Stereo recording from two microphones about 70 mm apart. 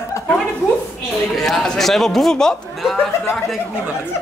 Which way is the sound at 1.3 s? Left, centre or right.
Centre.